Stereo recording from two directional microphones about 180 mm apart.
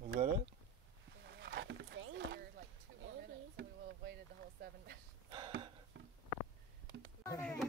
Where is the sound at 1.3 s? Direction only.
70° right (ahead or behind).